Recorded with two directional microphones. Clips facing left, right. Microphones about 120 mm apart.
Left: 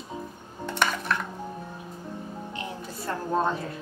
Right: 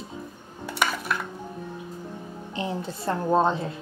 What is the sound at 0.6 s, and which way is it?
Dishes, 10° right (ahead or behind).